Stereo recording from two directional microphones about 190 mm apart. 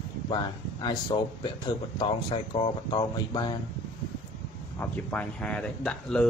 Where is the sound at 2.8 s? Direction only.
25° left (ahead or behind).